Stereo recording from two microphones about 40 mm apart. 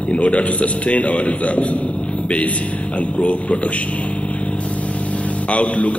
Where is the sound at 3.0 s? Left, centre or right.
Left.